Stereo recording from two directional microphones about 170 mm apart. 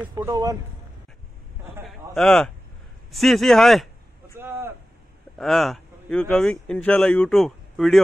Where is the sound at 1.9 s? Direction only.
5° left (ahead or behind).